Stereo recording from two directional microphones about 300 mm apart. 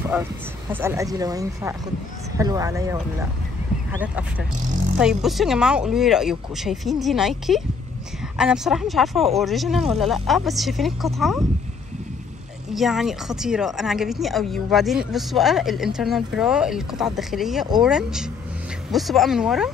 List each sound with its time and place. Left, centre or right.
0.1 s a woman's voice: centre
4.6 s speech: right
4.9 s a woman's voice: centre
12.7 s a woman's voice: centre